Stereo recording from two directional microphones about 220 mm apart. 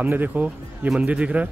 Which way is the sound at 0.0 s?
5° right (ahead or behind).